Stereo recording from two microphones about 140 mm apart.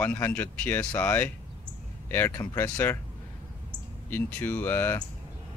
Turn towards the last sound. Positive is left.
turn(degrees=15)  # may be behind; listen again after turning